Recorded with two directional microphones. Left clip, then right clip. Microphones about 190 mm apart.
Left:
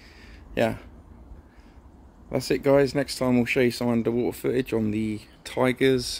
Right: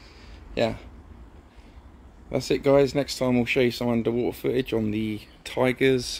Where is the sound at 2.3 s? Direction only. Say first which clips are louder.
Even; 5° left (ahead or behind).